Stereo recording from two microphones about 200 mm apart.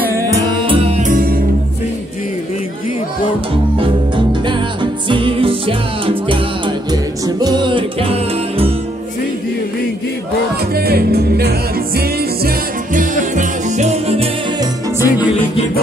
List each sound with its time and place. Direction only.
0.7 s music: 30° right (ahead or behind)
1.0 s music: 45° right (ahead or behind)
5.1 s music: 25° right (ahead or behind)
10.7 s music: 50° right (ahead or behind); by 14.3 s 30° right (ahead or behind)
14.6 s music: 10° right (ahead or behind)